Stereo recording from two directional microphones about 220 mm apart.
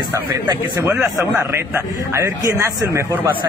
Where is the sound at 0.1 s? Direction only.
10° right (ahead or behind).